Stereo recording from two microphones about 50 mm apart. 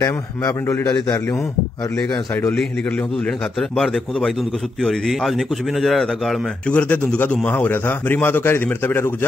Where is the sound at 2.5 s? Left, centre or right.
Left.